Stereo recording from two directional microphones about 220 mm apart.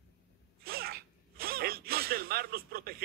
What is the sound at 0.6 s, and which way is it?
Zipper, 45° right (ahead or behind).